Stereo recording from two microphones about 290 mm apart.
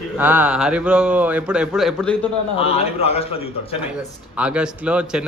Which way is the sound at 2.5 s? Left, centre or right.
Left.